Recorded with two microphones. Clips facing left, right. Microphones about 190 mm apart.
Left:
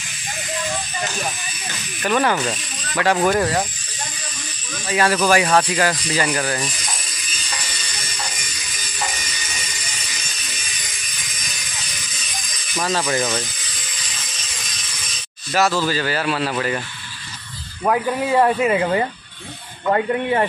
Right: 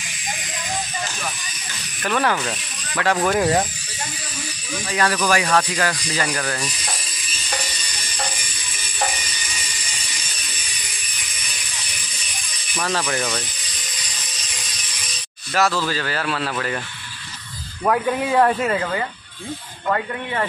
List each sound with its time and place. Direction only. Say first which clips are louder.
2.0 s speech: left 2 dB; 5° left (ahead or behind)
5.0 s speech: left 3 dB; 25° left (ahead or behind)
5.8 s speech: left 3 dB; 15° left (ahead or behind)
13.1 s speech: left 3 dB; 10° left (ahead or behind)
15.5 s speech: left 2 dB; centre (ahead or behind)
17.8 s speech: even; 5° left (ahead or behind)
19.9 s speech: left 5 dB; 25° left (ahead or behind)